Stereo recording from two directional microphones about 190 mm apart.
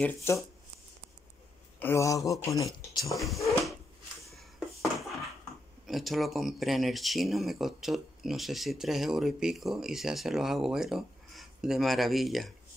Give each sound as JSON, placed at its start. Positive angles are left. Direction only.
{"t": 0.0, "sound": "speech", "side_deg": 15}
{"t": 1.8, "sound": "speech", "side_deg": 15}
{"t": 3.0, "sound": "speech", "side_deg": 0}
{"t": 5.9, "sound": "speech", "side_deg": 0}